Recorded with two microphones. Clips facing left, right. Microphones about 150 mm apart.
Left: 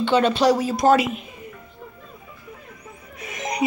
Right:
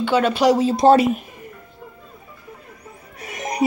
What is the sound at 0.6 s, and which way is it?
Speech, 25° right (ahead or behind).